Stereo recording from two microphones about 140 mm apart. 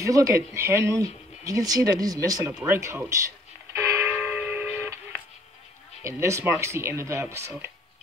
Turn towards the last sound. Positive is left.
turn(degrees=-20)  # may be behind; listen again after turning